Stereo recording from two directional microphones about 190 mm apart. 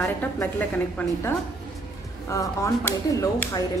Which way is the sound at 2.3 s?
15° left (ahead or behind).